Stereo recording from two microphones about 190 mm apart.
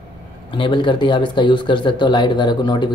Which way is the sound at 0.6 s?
25° left (ahead or behind).